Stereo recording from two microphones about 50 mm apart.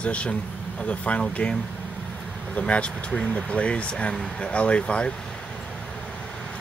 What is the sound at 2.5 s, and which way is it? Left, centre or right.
Speech, left.